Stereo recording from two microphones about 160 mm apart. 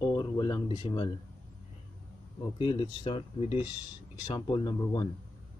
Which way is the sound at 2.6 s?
30° left (ahead or behind).